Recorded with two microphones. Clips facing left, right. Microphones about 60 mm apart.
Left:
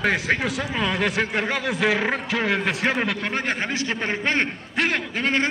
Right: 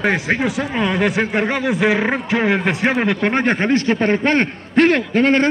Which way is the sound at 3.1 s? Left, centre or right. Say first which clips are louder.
Right 8 dB; right.